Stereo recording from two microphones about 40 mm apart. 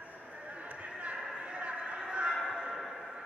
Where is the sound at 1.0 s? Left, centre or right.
Right.